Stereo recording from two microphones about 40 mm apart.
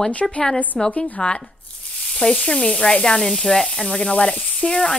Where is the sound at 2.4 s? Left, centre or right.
Left.